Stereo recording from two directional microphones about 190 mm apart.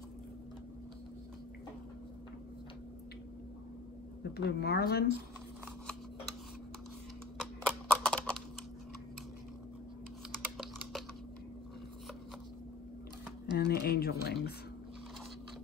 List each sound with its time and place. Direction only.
4.2 s speech: 60° left (ahead or behind)
7.3 s typing: 5° left (ahead or behind)
10.6 s typing: centre (ahead or behind)
13.5 s a sound: 60° left (ahead or behind)